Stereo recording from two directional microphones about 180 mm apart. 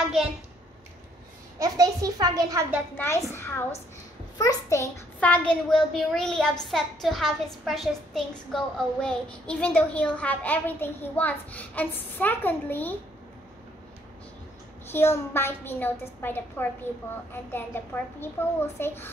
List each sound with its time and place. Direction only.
1.6 s a child's voice: 20° right (ahead or behind)
3.0 s a child's voice: 15° left (ahead or behind)
14.9 s a child's voice: 15° left (ahead or behind)